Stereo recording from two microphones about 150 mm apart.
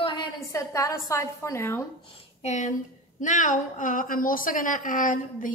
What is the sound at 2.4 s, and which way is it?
A woman's voice, 50° left (ahead or behind).